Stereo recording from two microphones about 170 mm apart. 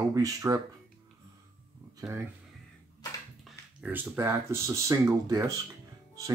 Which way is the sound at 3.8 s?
10° right (ahead or behind).